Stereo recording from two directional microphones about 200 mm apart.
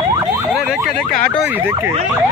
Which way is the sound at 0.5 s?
Centre (ahead or behind).